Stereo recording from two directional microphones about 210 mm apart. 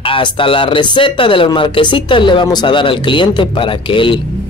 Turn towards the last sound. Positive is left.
turn(degrees=25)  # may be behind; listen again after turning